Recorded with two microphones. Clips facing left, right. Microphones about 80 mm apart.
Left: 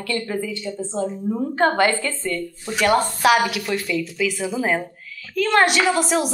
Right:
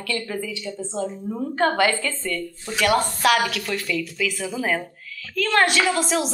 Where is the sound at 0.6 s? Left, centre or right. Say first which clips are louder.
Left 3 dB; centre.